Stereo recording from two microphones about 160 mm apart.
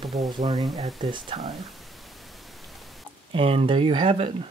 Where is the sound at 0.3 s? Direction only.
25° right (ahead or behind).